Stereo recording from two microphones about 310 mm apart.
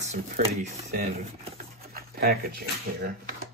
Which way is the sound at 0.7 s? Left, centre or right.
Right.